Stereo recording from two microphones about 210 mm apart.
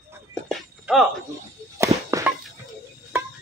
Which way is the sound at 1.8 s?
15° right (ahead or behind).